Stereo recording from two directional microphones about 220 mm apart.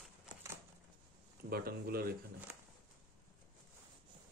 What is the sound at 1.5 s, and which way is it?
Speech, 45° right (ahead or behind).